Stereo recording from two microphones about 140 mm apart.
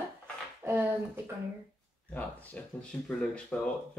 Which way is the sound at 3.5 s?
10° left (ahead or behind).